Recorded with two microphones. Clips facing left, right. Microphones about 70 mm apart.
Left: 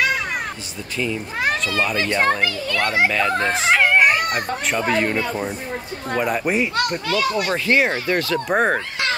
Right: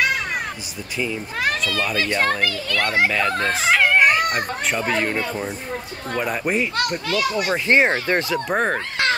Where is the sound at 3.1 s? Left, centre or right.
Centre.